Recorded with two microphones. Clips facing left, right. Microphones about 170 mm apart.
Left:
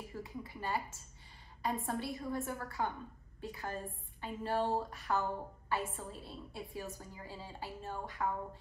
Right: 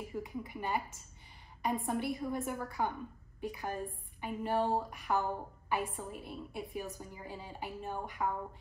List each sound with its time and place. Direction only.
0.1 s a woman's voice: 20° right (ahead or behind)